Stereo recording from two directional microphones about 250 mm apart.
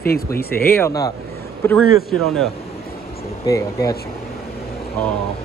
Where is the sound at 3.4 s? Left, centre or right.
Centre.